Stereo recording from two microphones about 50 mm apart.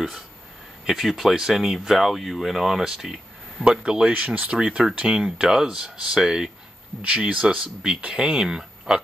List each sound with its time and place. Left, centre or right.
0.8 s speech: centre